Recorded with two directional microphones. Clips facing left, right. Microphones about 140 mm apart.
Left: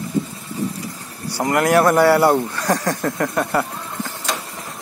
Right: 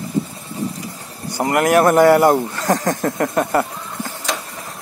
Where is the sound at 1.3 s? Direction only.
20° right (ahead or behind).